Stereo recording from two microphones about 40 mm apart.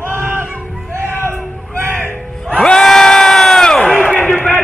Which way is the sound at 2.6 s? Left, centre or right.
Centre.